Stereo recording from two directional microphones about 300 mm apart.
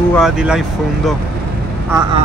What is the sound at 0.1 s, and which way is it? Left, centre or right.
Speech, centre.